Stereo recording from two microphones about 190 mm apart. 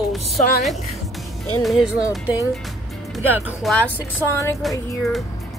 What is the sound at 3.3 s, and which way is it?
Speech, 10° right (ahead or behind).